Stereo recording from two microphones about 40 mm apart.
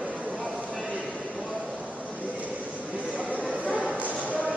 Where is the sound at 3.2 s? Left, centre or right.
Right.